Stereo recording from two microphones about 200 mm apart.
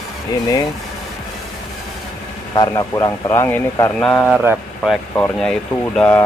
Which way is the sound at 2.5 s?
20° left (ahead or behind).